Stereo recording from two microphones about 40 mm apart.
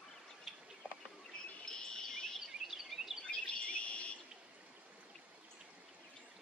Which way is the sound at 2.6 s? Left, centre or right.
Centre.